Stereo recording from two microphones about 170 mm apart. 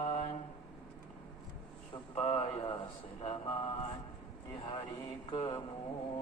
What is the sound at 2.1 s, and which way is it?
Mantra, 35° left (ahead or behind).